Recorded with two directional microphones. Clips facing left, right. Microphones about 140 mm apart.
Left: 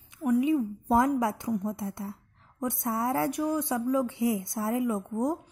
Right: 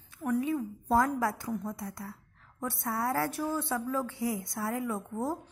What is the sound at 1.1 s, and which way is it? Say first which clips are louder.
A woman's voice: left 4 dB; 20° left (ahead or behind).